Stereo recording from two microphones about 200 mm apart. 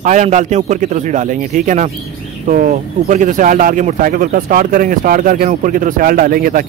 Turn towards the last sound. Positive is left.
turn(degrees=-45)  # may be behind; listen again after turning